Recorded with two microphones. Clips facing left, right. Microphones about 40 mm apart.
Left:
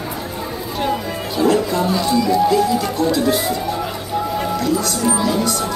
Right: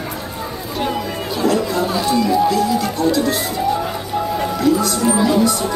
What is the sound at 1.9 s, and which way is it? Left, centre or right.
Music, centre.